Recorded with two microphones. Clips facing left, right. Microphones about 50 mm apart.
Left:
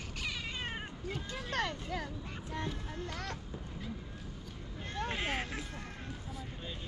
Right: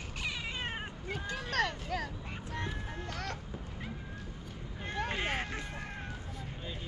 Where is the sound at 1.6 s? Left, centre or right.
Right.